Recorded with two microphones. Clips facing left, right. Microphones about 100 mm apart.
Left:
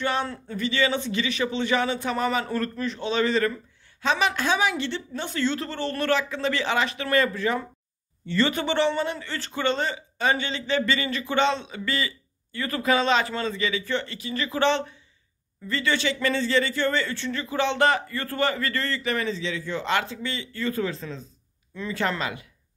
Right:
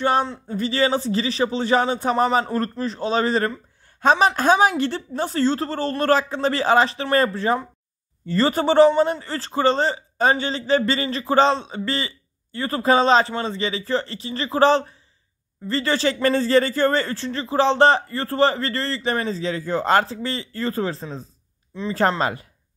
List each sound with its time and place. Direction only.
0.0 s speech: 35° right (ahead or behind)
21.7 s speech: 25° right (ahead or behind)
22.2 s speech: 40° right (ahead or behind)